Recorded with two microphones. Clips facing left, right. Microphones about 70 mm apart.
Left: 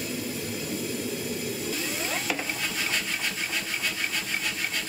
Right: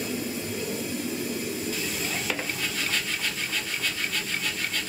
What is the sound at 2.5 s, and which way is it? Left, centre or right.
Wood, centre.